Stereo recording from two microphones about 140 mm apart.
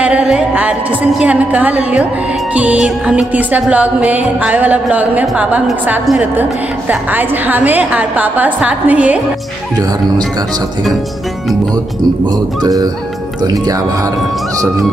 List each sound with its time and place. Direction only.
0.0 s a woman's voice: 10° right (ahead or behind)
2.5 s music: 10° right (ahead or behind)
12.3 s music: 25° right (ahead or behind)